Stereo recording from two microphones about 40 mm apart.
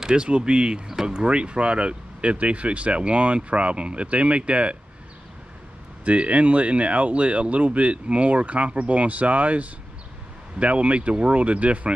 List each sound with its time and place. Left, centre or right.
0.0 s speech: right
6.0 s speech: right